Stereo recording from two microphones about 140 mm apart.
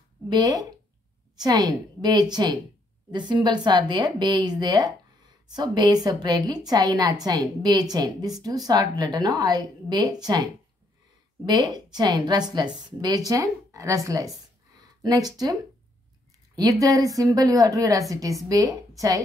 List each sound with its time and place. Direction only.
0.3 s a woman's voice: 25° right (ahead or behind)
16.8 s a woman's voice: 25° right (ahead or behind)